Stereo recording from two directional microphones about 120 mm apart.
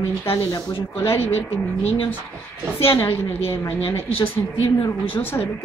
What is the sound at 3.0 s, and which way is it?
Speech, 20° left (ahead or behind).